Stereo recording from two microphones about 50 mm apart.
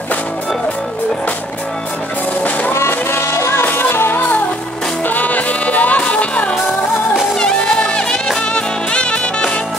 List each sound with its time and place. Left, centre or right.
2.7 s music: left
3.6 s music: left
4.2 s music: left
7.3 s music: centre